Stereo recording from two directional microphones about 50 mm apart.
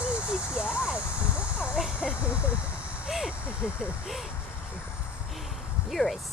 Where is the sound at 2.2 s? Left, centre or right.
Right.